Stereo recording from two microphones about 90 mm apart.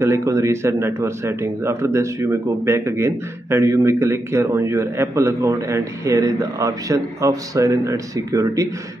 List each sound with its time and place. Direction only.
0.0 s speech: 35° right (ahead or behind)